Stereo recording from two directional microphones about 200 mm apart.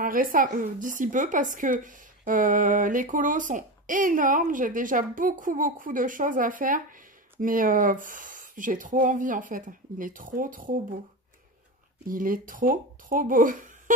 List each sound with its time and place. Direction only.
0.0 s speech: 45° right (ahead or behind)
12.1 s speech: 45° right (ahead or behind)